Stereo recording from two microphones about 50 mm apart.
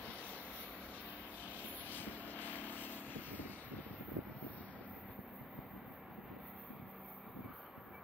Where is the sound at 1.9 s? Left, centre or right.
Left.